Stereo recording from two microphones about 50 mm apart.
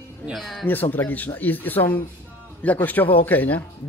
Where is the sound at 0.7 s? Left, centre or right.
Left.